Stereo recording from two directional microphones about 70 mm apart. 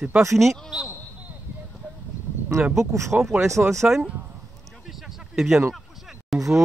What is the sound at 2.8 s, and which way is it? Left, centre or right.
Speech, right.